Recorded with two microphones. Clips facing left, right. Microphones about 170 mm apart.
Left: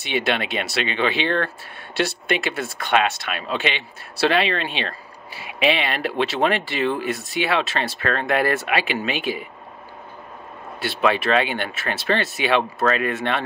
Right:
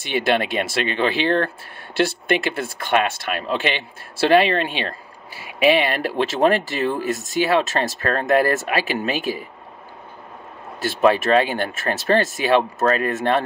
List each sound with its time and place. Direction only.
0.0 s speech: 45° right (ahead or behind)
10.8 s speech: 45° right (ahead or behind)